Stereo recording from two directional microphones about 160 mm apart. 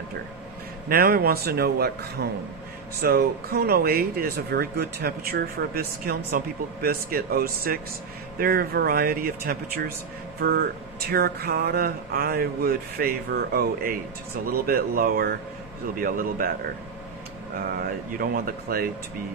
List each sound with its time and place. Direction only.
0.8 s speech: 65° right (ahead or behind); by 2.2 s 85° right
3.0 s a man's voice: 70° right (ahead or behind)
17.7 s speech: 65° right (ahead or behind)